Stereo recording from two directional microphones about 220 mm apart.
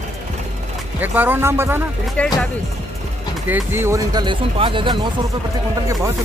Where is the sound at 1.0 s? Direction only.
10° right (ahead or behind).